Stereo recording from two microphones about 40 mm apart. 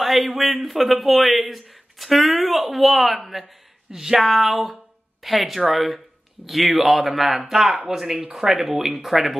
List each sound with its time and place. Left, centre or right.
0.0 s speech: centre